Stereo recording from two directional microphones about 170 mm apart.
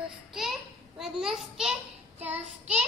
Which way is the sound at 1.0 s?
5° right (ahead or behind).